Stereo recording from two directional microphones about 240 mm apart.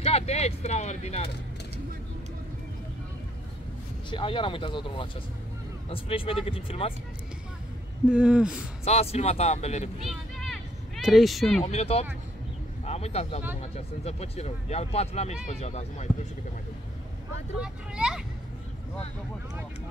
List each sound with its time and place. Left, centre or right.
0.0 s speech: left
4.1 s speech: left
8.1 s speech: centre
8.8 s speech: left
10.0 s a sound: centre
11.6 s speech: left
17.6 s speech: centre